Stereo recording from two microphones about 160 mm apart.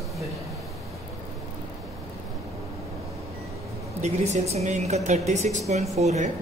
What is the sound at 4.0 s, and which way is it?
Speech, 45° right (ahead or behind).